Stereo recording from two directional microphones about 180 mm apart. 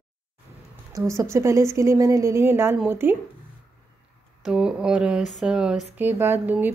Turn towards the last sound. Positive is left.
turn(degrees=-10)  # may be behind; listen again after turning